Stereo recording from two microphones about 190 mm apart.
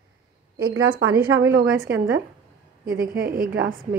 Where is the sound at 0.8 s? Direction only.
90° right.